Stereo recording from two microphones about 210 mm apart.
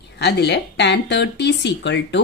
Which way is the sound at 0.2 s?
55° left (ahead or behind).